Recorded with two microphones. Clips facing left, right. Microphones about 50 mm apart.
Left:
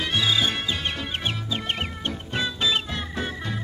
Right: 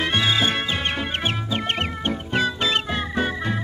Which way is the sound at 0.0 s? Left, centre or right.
Right.